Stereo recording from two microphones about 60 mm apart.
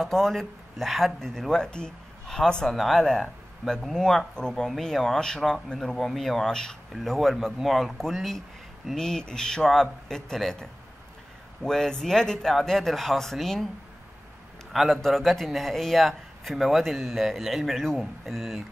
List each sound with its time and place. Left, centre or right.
0.0 s speech: centre
6.9 s speech: centre
14.7 s a man's voice: centre